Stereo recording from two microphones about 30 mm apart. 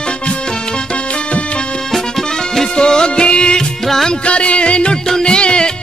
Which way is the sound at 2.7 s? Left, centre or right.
Left.